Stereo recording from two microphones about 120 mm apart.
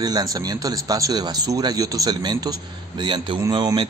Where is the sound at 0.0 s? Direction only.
30° right (ahead or behind).